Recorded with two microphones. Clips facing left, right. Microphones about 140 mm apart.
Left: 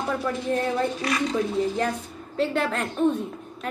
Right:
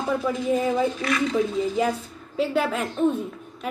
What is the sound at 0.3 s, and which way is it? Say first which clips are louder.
Speech: right 3 dB; 5° right (ahead or behind).